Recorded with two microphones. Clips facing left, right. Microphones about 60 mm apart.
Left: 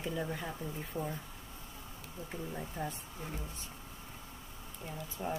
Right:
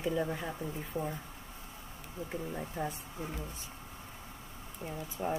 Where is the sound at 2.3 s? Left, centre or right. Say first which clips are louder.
Right 3 dB; centre.